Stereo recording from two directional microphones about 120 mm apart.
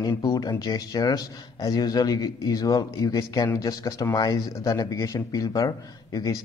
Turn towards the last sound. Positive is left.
turn(degrees=30)  # may be behind; listen again after turning